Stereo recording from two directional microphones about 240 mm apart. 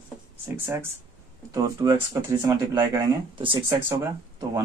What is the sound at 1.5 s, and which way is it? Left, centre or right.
Speech, centre.